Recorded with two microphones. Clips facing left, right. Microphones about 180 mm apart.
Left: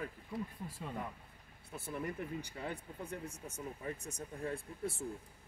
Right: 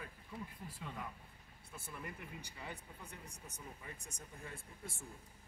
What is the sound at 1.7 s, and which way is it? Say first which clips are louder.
Speech: left 8 dB; 70° left (ahead or behind).